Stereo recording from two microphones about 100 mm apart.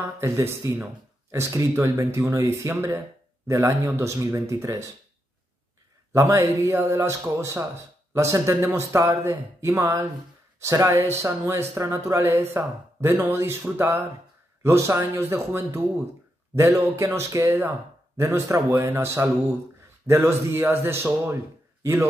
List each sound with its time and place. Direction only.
0.2 s speech: 30° right (ahead or behind)
6.1 s speech: 30° right (ahead or behind)
17.5 s speech: 20° right (ahead or behind)